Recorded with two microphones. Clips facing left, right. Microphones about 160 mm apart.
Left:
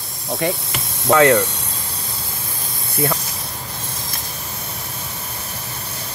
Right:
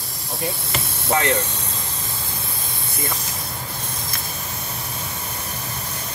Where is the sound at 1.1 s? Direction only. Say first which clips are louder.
Left 8 dB; 75° left (ahead or behind).